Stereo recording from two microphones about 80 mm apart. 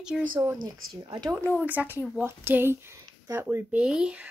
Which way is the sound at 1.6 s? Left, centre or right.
Right.